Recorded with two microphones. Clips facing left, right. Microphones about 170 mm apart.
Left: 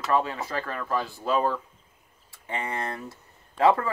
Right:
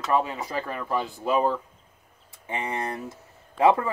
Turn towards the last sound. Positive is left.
turn(degrees=-15)  # may be behind; listen again after turning